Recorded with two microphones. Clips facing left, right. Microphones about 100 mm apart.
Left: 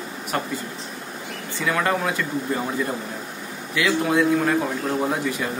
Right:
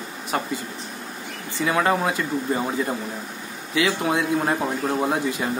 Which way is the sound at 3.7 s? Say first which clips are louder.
Left 2 dB; 25° right (ahead or behind).